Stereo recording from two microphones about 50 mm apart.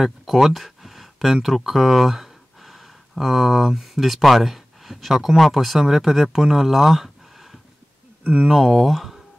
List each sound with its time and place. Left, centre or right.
0.0 s speech: centre
8.5 s speech: centre